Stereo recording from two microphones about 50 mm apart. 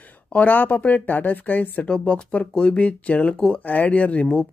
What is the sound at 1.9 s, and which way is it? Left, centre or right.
Speech, left.